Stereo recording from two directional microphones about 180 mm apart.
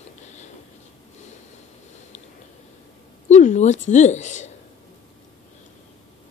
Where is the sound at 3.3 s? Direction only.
40° left (ahead or behind).